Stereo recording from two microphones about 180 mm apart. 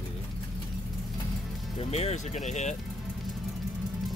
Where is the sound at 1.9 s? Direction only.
40° left (ahead or behind).